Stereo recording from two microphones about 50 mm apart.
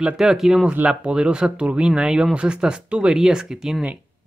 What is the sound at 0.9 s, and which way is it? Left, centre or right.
Speech, centre.